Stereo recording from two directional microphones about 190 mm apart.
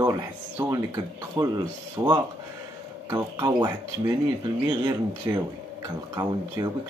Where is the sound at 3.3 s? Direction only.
20° right (ahead or behind).